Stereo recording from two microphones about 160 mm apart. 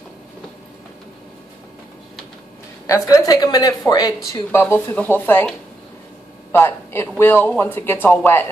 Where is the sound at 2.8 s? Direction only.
20° left (ahead or behind).